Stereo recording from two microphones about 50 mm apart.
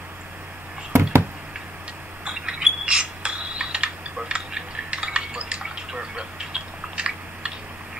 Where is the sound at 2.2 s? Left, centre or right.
Centre.